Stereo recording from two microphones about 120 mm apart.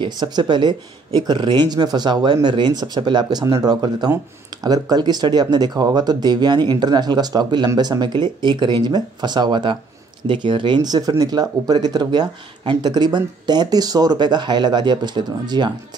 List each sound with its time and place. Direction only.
0.0 s speech: 35° right (ahead or behind)